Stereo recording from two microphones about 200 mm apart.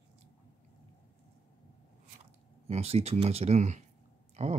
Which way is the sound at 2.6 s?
30° right (ahead or behind).